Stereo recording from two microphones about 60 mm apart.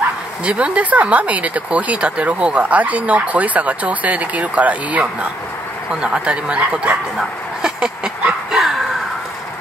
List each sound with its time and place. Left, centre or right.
0.5 s speech: centre
5.9 s speech: centre